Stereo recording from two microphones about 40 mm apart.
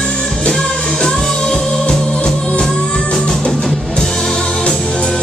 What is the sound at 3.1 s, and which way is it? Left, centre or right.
Music, centre.